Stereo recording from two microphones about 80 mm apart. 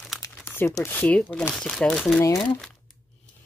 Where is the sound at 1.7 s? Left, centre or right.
Centre.